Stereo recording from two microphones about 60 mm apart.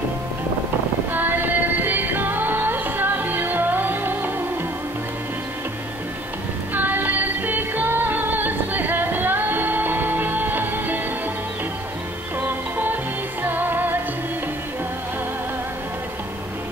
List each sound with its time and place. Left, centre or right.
1.1 s music: right
6.7 s music: right
12.4 s music: right